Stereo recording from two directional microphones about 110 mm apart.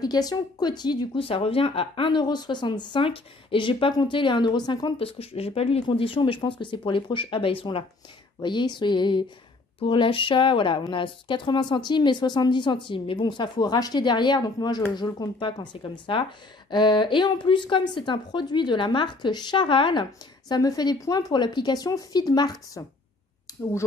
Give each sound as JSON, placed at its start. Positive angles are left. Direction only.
{"t": 0.0, "sound": "speech", "side_deg": 35}
{"t": 1.2, "sound": "speech", "side_deg": 55}
{"t": 4.9, "sound": "speech", "side_deg": 60}
{"t": 5.9, "sound": "speech", "side_deg": 50}
{"t": 8.4, "sound": "speech", "side_deg": 45}